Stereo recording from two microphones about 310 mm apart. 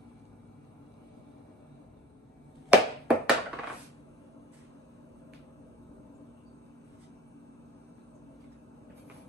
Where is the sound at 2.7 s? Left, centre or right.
Centre.